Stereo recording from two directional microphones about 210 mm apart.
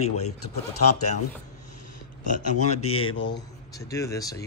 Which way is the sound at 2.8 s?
90° left.